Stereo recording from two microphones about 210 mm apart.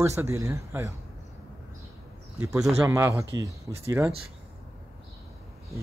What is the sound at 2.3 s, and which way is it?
Speech, 15° right (ahead or behind).